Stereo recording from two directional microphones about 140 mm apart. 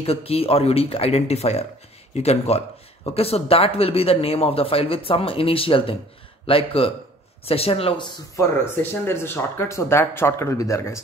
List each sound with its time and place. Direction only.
0.0 s speech: 45° left (ahead or behind)
9.0 s speech: 15° left (ahead or behind)